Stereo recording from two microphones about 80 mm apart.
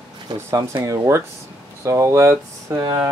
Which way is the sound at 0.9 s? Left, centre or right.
Right.